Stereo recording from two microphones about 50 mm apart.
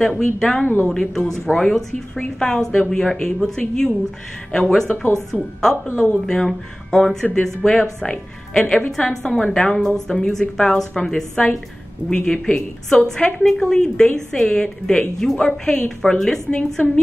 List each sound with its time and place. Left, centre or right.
0.2 s a woman's voice: centre